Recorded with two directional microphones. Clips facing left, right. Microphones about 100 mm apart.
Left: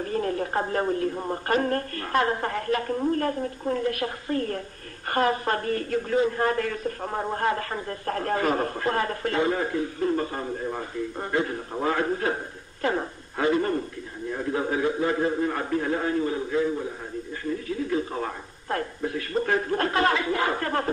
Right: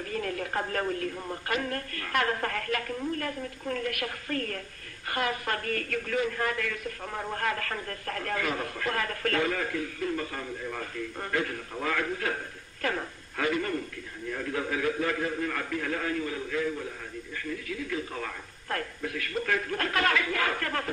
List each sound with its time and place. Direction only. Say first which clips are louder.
0.0 s a man's voice: left 6 dB; 30° left (ahead or behind)
10.8 s speech: left 5 dB; 25° left (ahead or behind)